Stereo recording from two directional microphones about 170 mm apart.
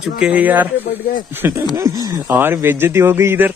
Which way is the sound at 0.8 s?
55° left (ahead or behind).